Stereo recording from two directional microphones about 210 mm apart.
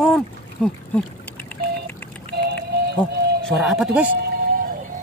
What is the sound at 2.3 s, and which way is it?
Music, 50° right (ahead or behind).